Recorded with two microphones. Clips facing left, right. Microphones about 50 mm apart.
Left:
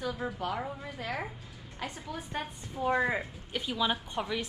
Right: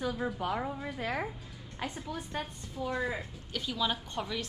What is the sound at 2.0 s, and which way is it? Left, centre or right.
Speech, centre.